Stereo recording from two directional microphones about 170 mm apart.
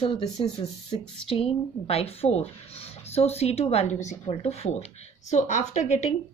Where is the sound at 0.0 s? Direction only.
30° left (ahead or behind).